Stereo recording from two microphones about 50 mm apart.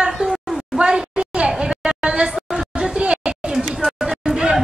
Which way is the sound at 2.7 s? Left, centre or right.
Centre.